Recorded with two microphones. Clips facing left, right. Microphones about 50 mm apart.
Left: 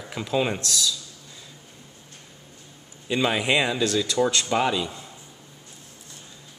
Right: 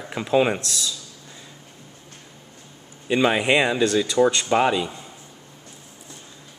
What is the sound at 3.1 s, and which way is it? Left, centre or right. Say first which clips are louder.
A man's voice: right 4 dB; centre.